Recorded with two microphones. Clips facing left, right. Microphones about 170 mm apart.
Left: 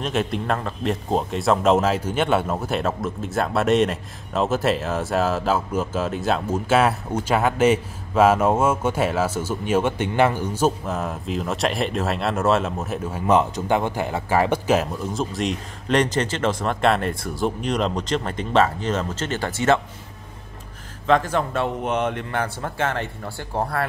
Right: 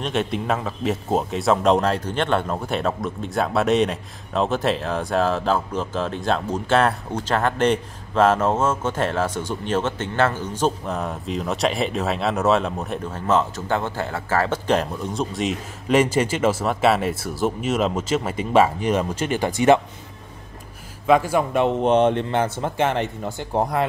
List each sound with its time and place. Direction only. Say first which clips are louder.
0.0 s speech: even; centre (ahead or behind)
13.3 s speech: left 2 dB; 15° left (ahead or behind); by 19.8 s 15° right (ahead or behind)
21.1 s speech: right 2 dB; 10° right (ahead or behind)
21.8 s speech: right 6 dB; 30° right (ahead or behind)